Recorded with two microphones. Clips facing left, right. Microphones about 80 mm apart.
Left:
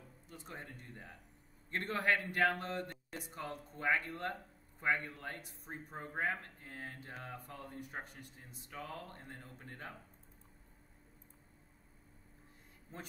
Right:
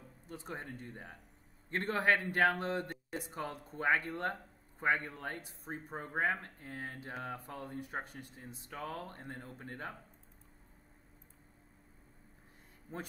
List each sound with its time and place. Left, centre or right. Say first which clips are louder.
0.3 s speech: right 6 dB; right
12.9 s speech: right 6 dB; right